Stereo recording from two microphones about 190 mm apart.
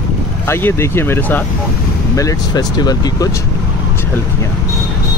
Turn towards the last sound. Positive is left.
turn(degrees=20)  # may be behind; listen again after turning